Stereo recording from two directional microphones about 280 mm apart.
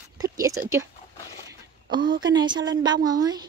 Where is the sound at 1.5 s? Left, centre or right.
Centre.